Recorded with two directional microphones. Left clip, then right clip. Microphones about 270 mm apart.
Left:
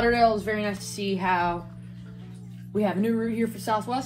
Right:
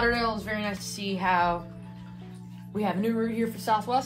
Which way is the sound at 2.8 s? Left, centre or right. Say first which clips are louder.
Left 2 dB; right.